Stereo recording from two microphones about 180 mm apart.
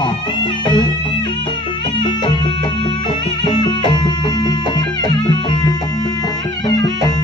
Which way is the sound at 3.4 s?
25° left (ahead or behind).